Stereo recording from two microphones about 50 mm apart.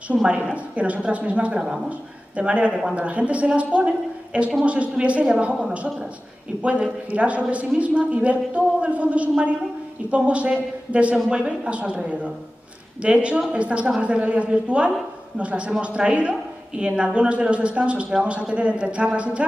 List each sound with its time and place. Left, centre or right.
0.3 s a man's voice: right